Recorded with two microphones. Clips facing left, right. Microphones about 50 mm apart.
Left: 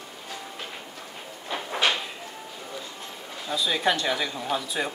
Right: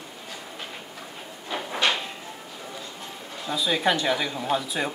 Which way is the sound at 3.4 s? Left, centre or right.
Centre.